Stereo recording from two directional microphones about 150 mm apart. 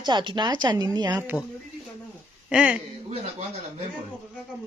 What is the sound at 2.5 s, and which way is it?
Speech, 5° right (ahead or behind).